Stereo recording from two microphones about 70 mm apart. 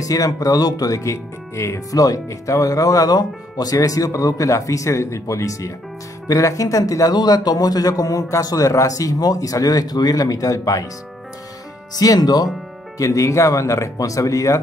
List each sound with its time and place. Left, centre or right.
0.0 s speech: left
11.9 s speech: left
12.9 s speech: left